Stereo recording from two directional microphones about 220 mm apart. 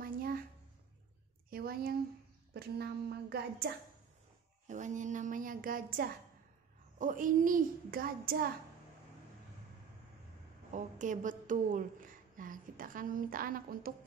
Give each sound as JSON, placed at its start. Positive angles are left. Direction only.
{"t": 0.0, "sound": "a sound", "side_deg": -40}
{"t": 1.5, "sound": "a woman's voice", "side_deg": -40}
{"t": 4.6, "sound": "a woman's voice", "side_deg": -35}
{"t": 10.7, "sound": "a woman's voice", "side_deg": -35}